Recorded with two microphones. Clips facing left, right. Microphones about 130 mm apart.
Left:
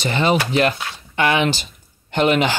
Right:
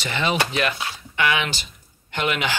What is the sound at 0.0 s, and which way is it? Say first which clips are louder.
Speech: left 5 dB; 40° left (ahead or behind).